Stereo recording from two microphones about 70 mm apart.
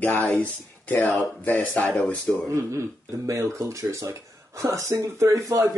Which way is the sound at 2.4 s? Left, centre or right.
Right.